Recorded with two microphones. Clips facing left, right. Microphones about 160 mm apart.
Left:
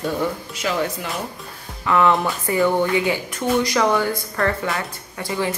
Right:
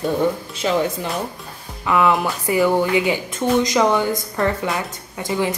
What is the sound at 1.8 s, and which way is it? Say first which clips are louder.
Speech: even; 10° right (ahead or behind).